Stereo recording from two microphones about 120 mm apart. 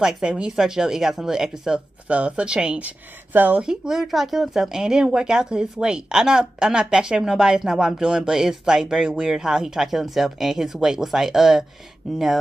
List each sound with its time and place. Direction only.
0.0 s speech: 5° right (ahead or behind)